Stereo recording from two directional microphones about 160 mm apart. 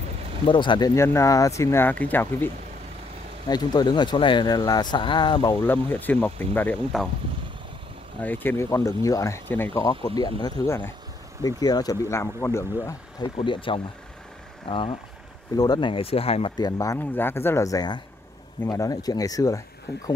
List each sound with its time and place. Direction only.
0.5 s speech: 30° left (ahead or behind); by 2.5 s 10° left (ahead or behind)
3.4 s speech: 25° left (ahead or behind)
5.6 s speech: 10° left (ahead or behind)
8.2 s speech: 10° left (ahead or behind)
13.4 s speech: 30° left (ahead or behind)
16.5 s speech: 25° left (ahead or behind)